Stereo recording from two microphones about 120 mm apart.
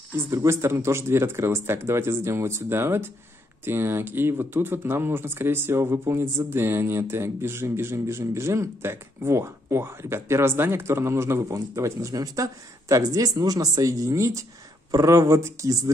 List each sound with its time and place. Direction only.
0.1 s speech: 25° right (ahead or behind)